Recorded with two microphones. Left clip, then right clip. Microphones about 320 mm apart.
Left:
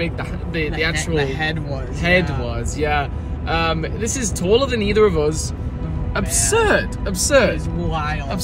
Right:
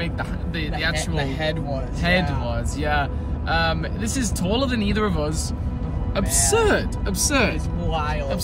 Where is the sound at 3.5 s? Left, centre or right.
Centre.